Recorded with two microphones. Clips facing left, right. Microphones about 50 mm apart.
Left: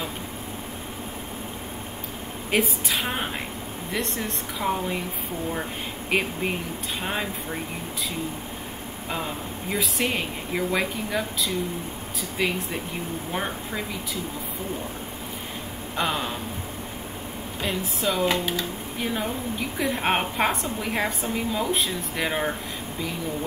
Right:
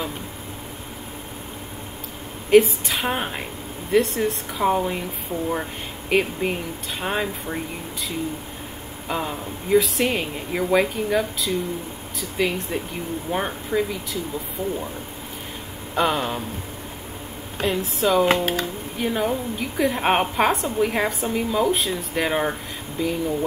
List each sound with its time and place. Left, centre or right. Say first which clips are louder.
2.5 s a woman's voice: right 9 dB; centre
6.0 s a woman's voice: right 4 dB; centre
9.1 s a woman's voice: right 4 dB; centre
15.9 s a sound: right 5 dB; centre
17.6 s speech: right 6 dB; centre
18.3 s speech: right 5 dB; right
18.9 s a woman's voice: right 5 dB; centre